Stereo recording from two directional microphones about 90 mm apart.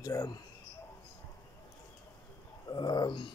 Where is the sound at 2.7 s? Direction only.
55° left (ahead or behind).